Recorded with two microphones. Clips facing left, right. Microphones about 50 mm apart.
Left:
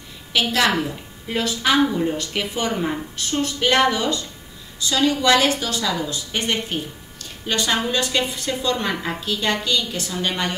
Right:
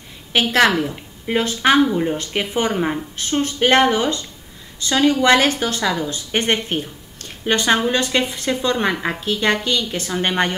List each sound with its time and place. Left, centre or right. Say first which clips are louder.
0.3 s speech: right 4 dB; right